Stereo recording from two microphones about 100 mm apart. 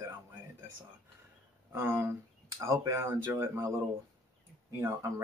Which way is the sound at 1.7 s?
25° right (ahead or behind).